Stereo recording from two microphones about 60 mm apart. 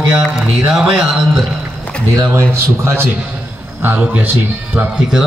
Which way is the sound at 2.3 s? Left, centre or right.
Right.